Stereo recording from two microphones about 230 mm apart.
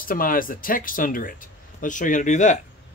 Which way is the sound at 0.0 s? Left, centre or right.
Left.